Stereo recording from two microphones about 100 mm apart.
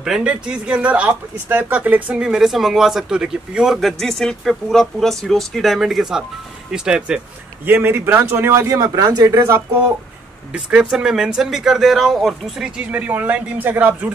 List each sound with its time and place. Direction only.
0.0 s speech: 10° right (ahead or behind)
7.6 s a man's voice: 20° right (ahead or behind)
8.7 s speech: 40° right (ahead or behind)
10.5 s speech: 10° right (ahead or behind)